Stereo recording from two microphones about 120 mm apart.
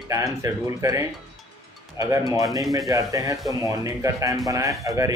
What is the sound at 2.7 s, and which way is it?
Speech, 30° right (ahead or behind).